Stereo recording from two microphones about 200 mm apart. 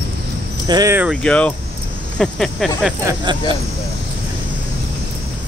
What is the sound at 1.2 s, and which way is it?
Speech, 5° left (ahead or behind).